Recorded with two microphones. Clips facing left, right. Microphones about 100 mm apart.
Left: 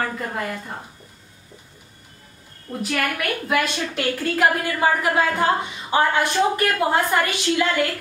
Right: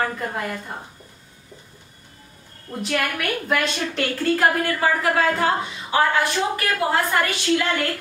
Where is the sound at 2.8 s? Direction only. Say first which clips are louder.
Even; centre (ahead or behind).